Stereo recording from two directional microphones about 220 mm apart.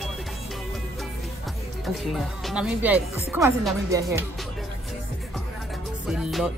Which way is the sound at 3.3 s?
10° right (ahead or behind).